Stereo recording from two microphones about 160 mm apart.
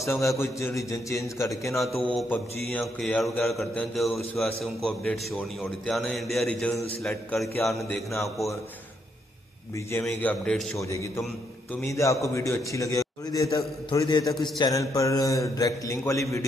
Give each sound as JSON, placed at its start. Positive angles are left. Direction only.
{"t": 0.2, "sound": "a man's voice", "side_deg": 20}
{"t": 2.1, "sound": "a man's voice", "side_deg": 5}
{"t": 7.5, "sound": "speech", "side_deg": 15}
{"t": 9.8, "sound": "speech", "side_deg": 15}
{"t": 10.4, "sound": "a man's voice", "side_deg": 5}
{"t": 10.8, "sound": "a man's voice", "side_deg": 20}